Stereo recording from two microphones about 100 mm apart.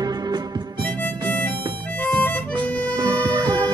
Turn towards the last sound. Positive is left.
turn(degrees=-45)  # may be behind; listen again after turning